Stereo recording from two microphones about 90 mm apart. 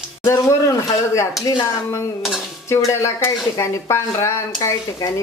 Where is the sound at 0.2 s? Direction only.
35° left (ahead or behind).